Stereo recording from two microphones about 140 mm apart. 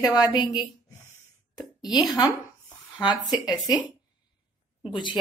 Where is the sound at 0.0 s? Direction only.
30° left (ahead or behind).